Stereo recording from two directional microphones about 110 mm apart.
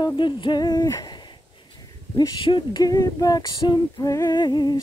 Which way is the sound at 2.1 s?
40° left (ahead or behind).